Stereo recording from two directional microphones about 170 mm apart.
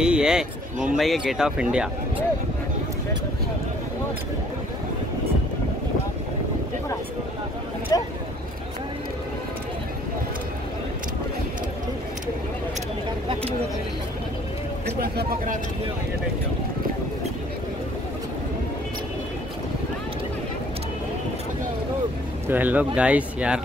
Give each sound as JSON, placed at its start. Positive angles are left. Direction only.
{"t": 0.0, "sound": "speech", "side_deg": -5}
{"t": 7.9, "sound": "speech", "side_deg": 20}
{"t": 13.3, "sound": "speech", "side_deg": -35}
{"t": 14.9, "sound": "speech", "side_deg": -70}
{"t": 22.5, "sound": "speech", "side_deg": -10}